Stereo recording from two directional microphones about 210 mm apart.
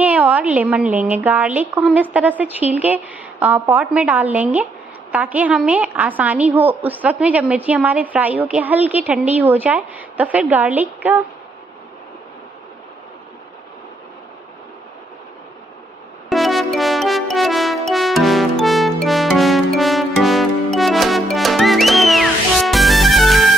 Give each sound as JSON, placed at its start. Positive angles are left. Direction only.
{"t": 0.0, "sound": "a woman's voice", "side_deg": -5}
{"t": 16.3, "sound": "music", "side_deg": 0}